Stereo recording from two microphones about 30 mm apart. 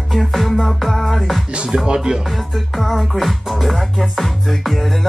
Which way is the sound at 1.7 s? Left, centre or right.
Right.